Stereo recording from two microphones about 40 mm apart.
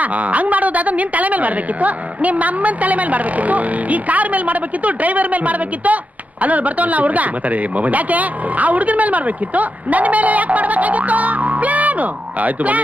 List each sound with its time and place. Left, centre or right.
0.0 s speech: right